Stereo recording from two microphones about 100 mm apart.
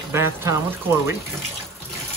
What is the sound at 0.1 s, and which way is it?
Speech, 25° right (ahead or behind).